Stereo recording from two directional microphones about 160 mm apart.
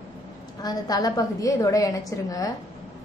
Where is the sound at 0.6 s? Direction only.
25° left (ahead or behind).